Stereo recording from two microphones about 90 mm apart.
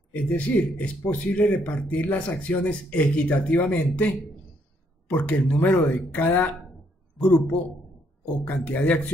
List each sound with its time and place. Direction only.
0.1 s a man's voice: 15° left (ahead or behind)
8.5 s speech: 15° left (ahead or behind)